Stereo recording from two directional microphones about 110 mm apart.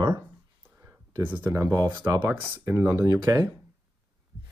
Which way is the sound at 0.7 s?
20° right (ahead or behind).